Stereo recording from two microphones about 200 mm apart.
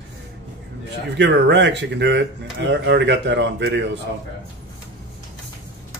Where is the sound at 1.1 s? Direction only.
60° right (ahead or behind).